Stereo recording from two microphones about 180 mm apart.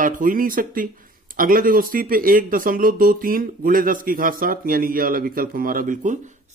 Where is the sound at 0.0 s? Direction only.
50° right (ahead or behind).